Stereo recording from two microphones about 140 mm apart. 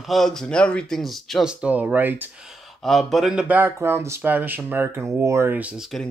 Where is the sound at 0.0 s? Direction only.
Centre (ahead or behind).